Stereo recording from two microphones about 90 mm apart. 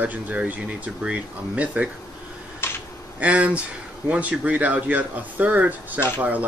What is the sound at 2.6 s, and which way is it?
Finger snapping, 25° left (ahead or behind).